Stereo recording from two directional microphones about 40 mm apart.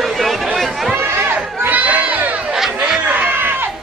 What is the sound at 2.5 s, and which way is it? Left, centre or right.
Chatter, centre.